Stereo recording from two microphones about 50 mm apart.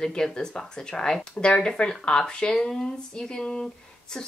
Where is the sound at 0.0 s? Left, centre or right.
Centre.